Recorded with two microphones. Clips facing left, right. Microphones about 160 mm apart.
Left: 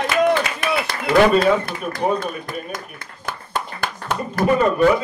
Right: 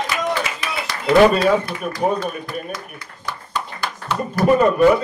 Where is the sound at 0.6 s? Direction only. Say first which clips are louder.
Left 3 dB; 50° left (ahead or behind).